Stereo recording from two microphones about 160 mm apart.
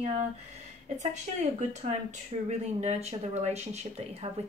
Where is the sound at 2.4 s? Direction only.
45° right (ahead or behind).